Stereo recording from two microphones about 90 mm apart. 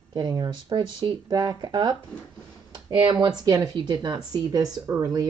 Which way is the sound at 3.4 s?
50° right (ahead or behind).